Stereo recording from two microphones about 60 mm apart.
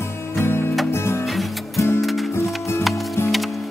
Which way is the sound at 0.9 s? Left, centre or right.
Left.